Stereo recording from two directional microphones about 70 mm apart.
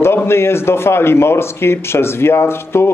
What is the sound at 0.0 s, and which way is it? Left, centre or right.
Speech, left.